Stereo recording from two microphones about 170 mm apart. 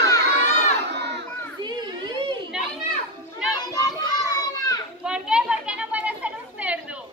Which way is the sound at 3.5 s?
20° left (ahead or behind).